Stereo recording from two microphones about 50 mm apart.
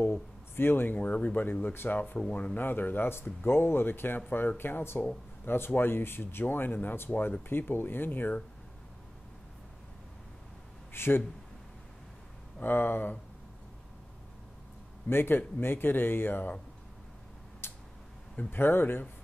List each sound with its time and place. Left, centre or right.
0.0 s speech: left
0.9 s speech: left
2.3 s speech: left
2.6 s speech: left
10.9 s speech: left
12.6 s speech: left
15.0 s speech: left
17.6 s tick-tock: left
18.5 s speech: left